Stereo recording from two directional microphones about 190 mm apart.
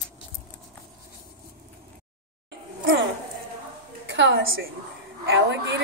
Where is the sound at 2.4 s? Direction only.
65° right (ahead or behind).